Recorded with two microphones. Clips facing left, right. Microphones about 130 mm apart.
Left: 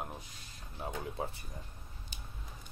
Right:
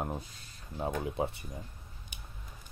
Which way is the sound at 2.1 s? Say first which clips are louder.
Even; 15° right (ahead or behind).